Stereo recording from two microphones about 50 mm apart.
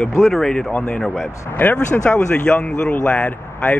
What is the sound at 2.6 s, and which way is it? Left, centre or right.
A man's voice, centre.